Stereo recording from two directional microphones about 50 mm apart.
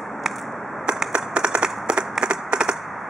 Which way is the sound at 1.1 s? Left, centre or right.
Right.